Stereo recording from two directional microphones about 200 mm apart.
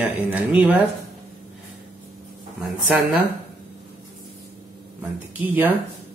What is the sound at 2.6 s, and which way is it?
Speech, 5° right (ahead or behind).